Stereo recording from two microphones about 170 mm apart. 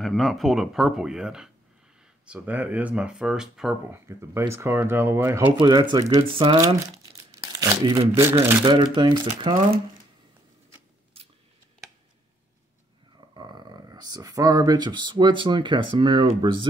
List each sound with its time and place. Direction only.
0.0 s speech: centre (ahead or behind)
4.2 s speech: 15° right (ahead or behind)
5.6 s speech: 25° right (ahead or behind)
7.2 s crumpling: 20° right (ahead or behind)
8.2 s speech: 15° right (ahead or behind)
8.6 s speech: 25° right (ahead or behind)
13.3 s speech: 25° right (ahead or behind)